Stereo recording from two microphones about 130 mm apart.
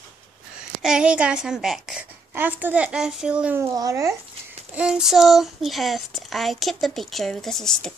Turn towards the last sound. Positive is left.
turn(degrees=5)  # may be behind; listen again after turning